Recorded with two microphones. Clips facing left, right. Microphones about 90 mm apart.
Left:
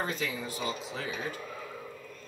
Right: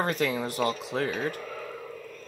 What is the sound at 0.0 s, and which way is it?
Speech, 60° right (ahead or behind).